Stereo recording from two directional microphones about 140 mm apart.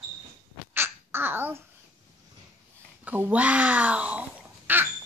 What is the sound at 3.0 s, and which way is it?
Speech, 10° right (ahead or behind).